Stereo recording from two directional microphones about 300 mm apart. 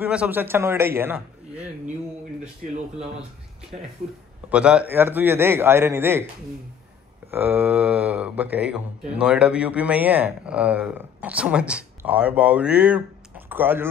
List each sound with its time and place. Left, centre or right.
0.0 s a man's voice: centre
2.6 s speech: right
4.5 s a man's voice: centre
7.2 s speech: centre